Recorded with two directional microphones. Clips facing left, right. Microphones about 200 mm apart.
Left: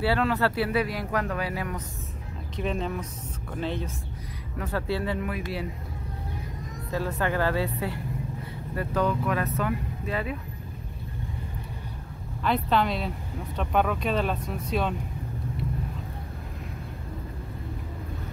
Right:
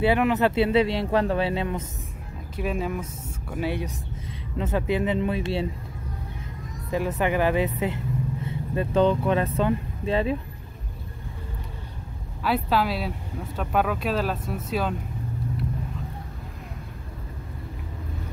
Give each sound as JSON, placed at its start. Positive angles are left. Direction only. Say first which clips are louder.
{"t": 0.0, "sound": "speech", "louder": "right 4 dB", "side_deg": -20}
{"t": 2.5, "sound": "speech", "louder": "right 2 dB", "side_deg": -5}
{"t": 6.9, "sound": "speech", "louder": "right 4 dB", "side_deg": -20}
{"t": 12.4, "sound": "speech", "louder": "right 1 dB", "side_deg": -5}